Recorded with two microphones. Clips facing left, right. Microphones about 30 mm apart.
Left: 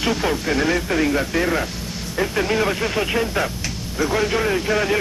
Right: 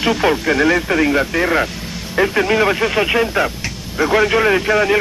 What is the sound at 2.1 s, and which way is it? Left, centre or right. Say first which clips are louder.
Speech: right 6 dB; right.